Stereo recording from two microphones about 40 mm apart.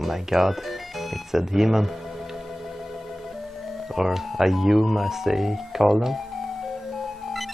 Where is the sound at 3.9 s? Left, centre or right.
Centre.